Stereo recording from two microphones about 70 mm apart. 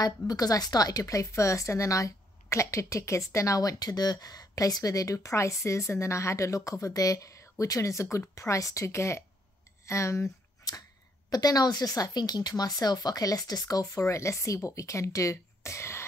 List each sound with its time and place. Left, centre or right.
0.0 s speech: left
11.2 s speech: left